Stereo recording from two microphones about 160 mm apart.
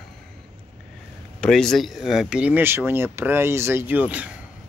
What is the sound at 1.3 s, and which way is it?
Speech, 5° left (ahead or behind).